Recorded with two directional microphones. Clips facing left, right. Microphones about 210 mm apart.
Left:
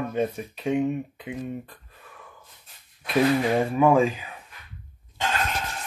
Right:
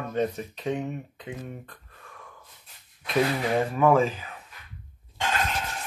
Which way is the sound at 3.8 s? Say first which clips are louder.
Left 1 dB; 15° left (ahead or behind).